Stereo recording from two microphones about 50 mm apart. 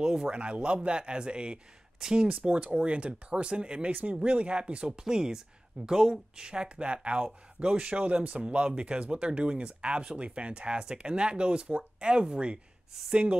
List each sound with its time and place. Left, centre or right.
0.0 s speech: centre